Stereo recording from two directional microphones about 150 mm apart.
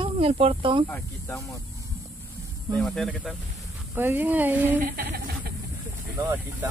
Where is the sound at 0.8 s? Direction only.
10° left (ahead or behind).